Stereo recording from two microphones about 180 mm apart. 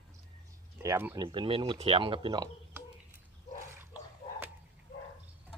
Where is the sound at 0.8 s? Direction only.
15° right (ahead or behind).